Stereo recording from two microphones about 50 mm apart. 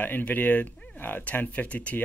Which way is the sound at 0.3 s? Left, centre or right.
Left.